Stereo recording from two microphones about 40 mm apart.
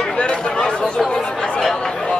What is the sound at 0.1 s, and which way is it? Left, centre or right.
Chatter, left.